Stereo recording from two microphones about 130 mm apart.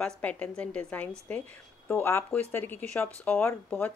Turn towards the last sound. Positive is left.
turn(degrees=15)  # may be behind; listen again after turning